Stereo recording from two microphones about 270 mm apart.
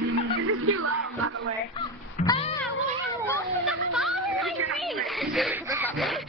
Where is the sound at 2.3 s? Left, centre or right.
Left.